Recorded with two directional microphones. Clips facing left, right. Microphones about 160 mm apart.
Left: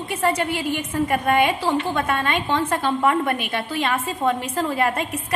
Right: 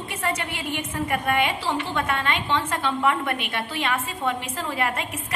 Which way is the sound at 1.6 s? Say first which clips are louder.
Left 4 dB; 40° left (ahead or behind).